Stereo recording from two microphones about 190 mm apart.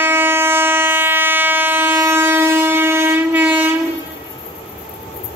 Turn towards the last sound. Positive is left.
turn(degrees=-10)  # may be behind; listen again after turning